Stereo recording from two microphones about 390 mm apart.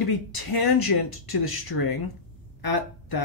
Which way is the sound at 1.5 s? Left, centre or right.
Left.